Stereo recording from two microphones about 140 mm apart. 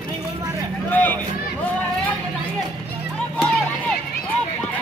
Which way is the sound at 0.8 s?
15° left (ahead or behind).